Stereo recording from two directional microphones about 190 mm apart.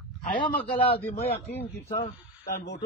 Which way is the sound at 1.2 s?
35° left (ahead or behind).